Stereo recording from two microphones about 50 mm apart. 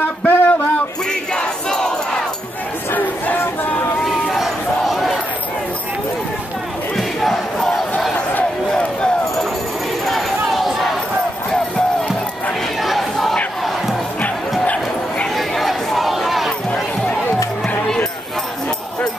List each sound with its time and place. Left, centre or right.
0.3 s a sound: left
1.3 s crowd: centre
2.9 s crowd: left
4.0 s run: centre
7.0 s battle cry: centre
10.0 s a sound: centre
12.8 s battle cry: centre
14.6 s bow-wow: left
15.3 s a sound: centre
16.7 s music: centre